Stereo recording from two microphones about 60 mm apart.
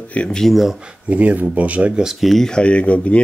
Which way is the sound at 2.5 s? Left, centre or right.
Centre.